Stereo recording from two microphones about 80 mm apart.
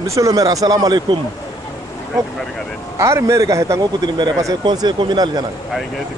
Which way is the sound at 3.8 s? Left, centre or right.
Right.